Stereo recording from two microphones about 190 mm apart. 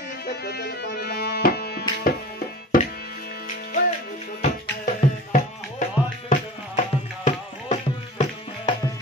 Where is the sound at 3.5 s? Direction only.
40° left (ahead or behind).